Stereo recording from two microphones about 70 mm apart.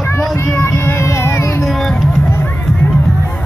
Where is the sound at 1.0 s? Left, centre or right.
Left.